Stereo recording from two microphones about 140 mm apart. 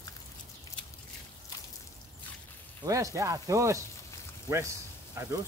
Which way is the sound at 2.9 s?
25° right (ahead or behind).